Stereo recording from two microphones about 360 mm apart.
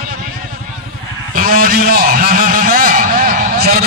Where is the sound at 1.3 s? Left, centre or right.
Right.